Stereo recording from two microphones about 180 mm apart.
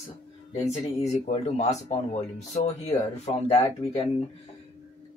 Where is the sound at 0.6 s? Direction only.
35° left (ahead or behind).